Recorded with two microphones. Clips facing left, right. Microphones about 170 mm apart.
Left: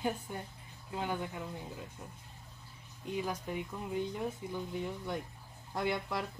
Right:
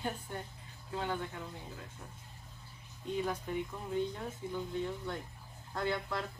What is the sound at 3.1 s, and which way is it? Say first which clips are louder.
Speech: right 1 dB; 10° left (ahead or behind).